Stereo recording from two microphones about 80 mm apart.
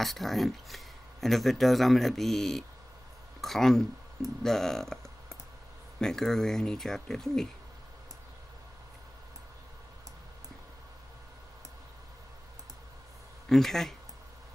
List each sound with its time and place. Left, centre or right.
0.0 s speech: centre
13.5 s speech: centre